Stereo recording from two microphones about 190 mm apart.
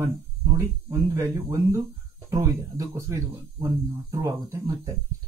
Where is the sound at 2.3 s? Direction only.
15° right (ahead or behind).